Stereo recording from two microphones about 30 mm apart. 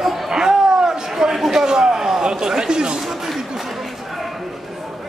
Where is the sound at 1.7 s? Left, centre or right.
Right.